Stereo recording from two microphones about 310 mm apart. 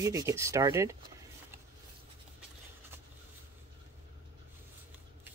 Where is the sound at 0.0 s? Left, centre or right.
Centre.